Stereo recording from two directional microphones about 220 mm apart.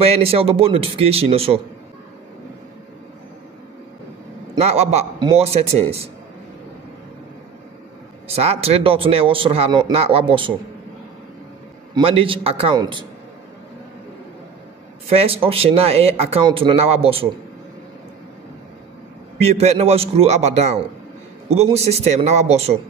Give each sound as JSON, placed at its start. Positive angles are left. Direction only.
{"t": 0.0, "sound": "a man's voice", "side_deg": -25}
{"t": 4.6, "sound": "a man's voice", "side_deg": -30}
{"t": 8.4, "sound": "a man's voice", "side_deg": -25}
{"t": 11.9, "sound": "a man's voice", "side_deg": -25}
{"t": 15.0, "sound": "a man's voice", "side_deg": -25}
{"t": 19.3, "sound": "a man's voice", "side_deg": -30}